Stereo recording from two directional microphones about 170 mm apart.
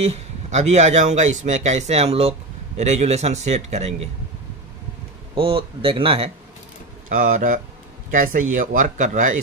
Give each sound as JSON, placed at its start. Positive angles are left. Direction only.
{"t": 0.0, "sound": "a man's voice", "side_deg": -40}
{"t": 5.3, "sound": "a man's voice", "side_deg": -30}
{"t": 7.1, "sound": "speech", "side_deg": -50}